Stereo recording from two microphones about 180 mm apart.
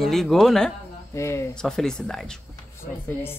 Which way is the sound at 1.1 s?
15° left (ahead or behind).